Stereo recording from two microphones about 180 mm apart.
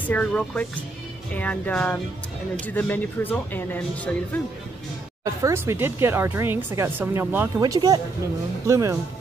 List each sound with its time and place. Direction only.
0.0 s speech: 5° left (ahead or behind)
5.2 s speech: 15° right (ahead or behind)